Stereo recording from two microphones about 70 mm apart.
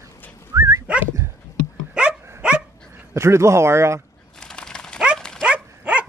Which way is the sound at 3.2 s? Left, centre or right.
Right.